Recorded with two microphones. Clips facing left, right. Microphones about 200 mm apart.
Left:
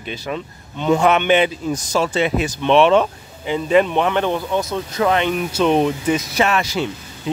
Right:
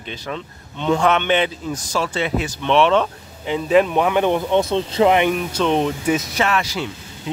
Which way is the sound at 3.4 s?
Centre (ahead or behind).